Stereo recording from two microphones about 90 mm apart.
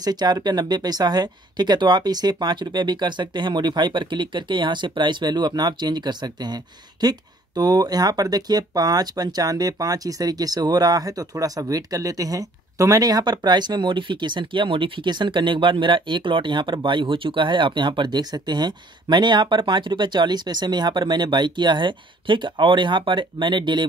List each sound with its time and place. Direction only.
0.0 s speech: 50° right (ahead or behind)